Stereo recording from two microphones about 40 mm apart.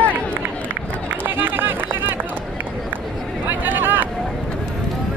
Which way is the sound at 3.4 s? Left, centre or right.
Right.